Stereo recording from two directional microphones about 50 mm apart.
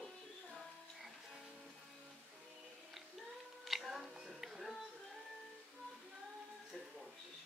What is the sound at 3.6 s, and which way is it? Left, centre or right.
Music, centre.